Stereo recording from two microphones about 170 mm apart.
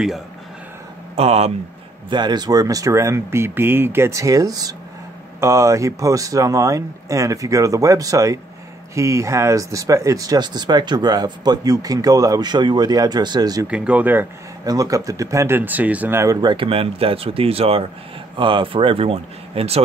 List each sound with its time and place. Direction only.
1.1 s speech: 35° right (ahead or behind)
2.0 s speech: 25° right (ahead or behind)
13.7 s speech: 5° right (ahead or behind)
14.6 s speech: 20° right (ahead or behind)